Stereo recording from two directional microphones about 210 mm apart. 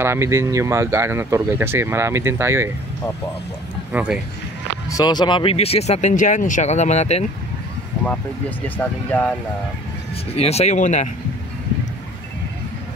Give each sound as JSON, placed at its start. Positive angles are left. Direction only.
{"t": 0.0, "sound": "speech", "side_deg": -10}
{"t": 3.9, "sound": "speech", "side_deg": -5}
{"t": 4.8, "sound": "speech", "side_deg": 20}
{"t": 8.0, "sound": "speech", "side_deg": 5}
{"t": 10.3, "sound": "speech", "side_deg": 30}